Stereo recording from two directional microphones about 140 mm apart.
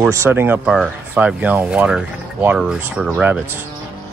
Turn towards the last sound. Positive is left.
turn(degrees=-5)  # may be behind; listen again after turning